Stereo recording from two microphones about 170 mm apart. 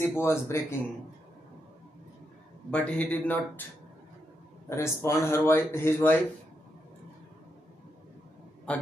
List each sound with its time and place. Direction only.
0.0 s speech: 15° left (ahead or behind)
2.7 s speech: 5° left (ahead or behind)
4.6 s speech: 15° left (ahead or behind)
8.7 s speech: 5° left (ahead or behind)